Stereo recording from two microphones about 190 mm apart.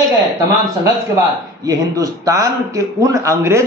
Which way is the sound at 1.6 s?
20° right (ahead or behind).